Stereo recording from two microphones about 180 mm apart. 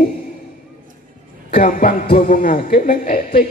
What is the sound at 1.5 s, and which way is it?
A man's voice, 50° left (ahead or behind).